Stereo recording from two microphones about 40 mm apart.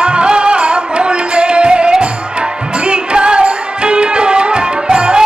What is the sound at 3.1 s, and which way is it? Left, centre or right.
Music, right.